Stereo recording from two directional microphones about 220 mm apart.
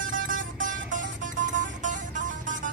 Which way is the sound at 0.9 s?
35° right (ahead or behind).